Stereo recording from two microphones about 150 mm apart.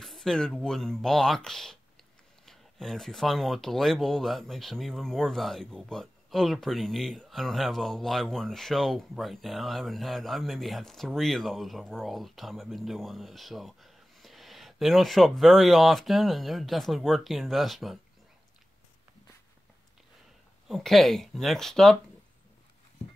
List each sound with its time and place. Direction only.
0.0 s speech: centre (ahead or behind)
20.6 s speech: centre (ahead or behind)